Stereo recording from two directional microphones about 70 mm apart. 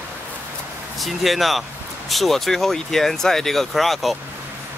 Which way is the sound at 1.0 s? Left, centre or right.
Centre.